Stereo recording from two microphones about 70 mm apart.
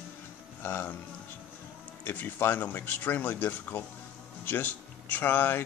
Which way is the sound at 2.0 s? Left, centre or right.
Left.